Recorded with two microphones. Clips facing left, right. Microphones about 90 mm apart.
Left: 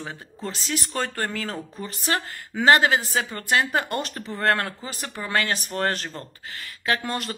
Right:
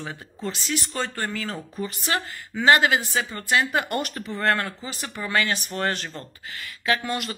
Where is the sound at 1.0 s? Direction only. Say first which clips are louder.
Left 3 dB; 55° left (ahead or behind).